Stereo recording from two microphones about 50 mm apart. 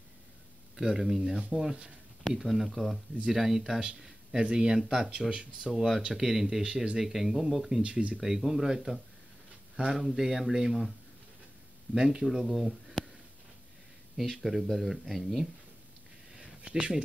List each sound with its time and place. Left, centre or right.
0.7 s speech: centre
7.8 s speech: right
8.2 s speech: centre
9.9 s speech: centre
11.9 s speech: centre
12.3 s speech: centre
14.1 s speech: centre
16.3 s a sound: centre